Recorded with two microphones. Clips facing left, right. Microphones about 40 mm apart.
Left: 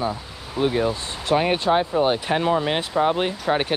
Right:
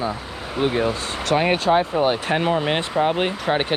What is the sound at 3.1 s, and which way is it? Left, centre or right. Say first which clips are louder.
Speech: right 1 dB; right.